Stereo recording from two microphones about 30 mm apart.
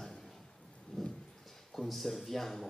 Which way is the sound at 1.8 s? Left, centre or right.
Centre.